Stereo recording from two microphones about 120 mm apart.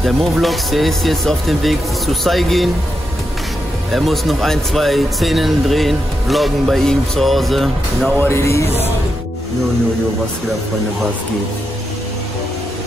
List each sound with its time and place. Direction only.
0.0 s speech: centre (ahead or behind)
3.9 s speech: centre (ahead or behind)
8.2 s speech: 20° left (ahead or behind)